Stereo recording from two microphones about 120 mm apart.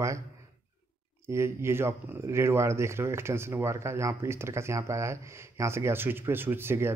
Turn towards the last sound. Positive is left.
turn(degrees=-20)  # may be behind; listen again after turning